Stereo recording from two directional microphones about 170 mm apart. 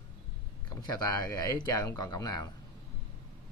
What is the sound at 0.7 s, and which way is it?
Speech, 20° left (ahead or behind).